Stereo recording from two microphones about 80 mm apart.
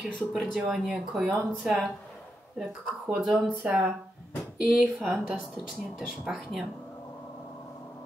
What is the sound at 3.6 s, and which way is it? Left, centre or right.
Speech, centre.